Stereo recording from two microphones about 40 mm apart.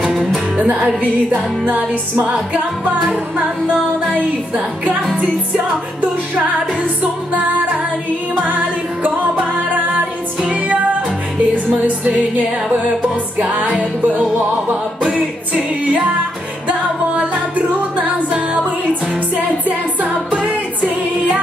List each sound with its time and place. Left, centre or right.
0.1 s music: centre
2.2 s music: right
10.4 s music: right
11.5 s music: right
13.7 s music: right
17.6 s music: right
20.0 s music: right